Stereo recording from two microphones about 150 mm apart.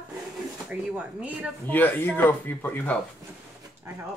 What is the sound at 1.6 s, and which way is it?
Speech, 10° left (ahead or behind).